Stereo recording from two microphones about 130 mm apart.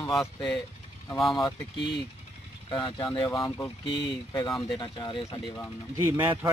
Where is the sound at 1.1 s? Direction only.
Centre (ahead or behind).